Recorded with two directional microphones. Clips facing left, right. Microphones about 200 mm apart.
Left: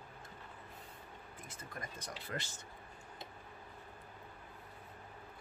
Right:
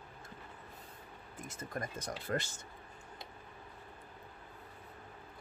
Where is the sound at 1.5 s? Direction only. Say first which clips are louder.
Right 8 dB; 45° right (ahead or behind).